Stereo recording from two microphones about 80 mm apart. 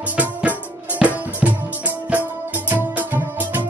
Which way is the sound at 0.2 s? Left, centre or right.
Centre.